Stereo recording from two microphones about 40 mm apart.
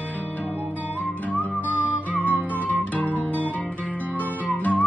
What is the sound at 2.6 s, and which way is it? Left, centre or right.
Guitar, left.